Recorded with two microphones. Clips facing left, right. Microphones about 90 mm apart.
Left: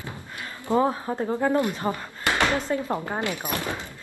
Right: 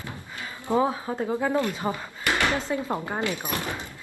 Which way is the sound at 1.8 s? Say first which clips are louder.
Left 2 dB; 10° right (ahead or behind).